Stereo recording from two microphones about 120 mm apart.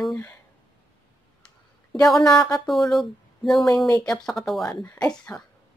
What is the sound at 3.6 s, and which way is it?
Speech, 30° left (ahead or behind).